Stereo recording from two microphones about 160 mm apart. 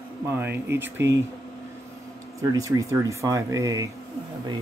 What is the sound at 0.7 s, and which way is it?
Speech, 15° right (ahead or behind).